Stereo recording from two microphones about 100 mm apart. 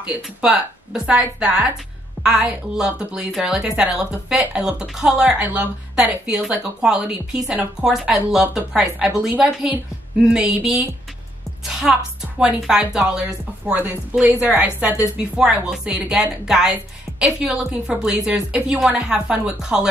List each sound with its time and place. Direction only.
0.0 s a woman's voice: 10° right (ahead or behind)